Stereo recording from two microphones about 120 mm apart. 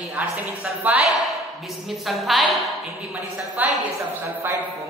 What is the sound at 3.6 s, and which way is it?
Speech, 15° right (ahead or behind).